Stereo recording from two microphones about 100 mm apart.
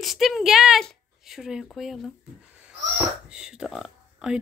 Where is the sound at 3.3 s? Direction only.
10° right (ahead or behind).